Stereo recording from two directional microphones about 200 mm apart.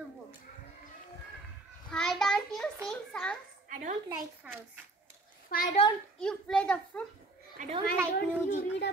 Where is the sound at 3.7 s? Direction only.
35° right (ahead or behind).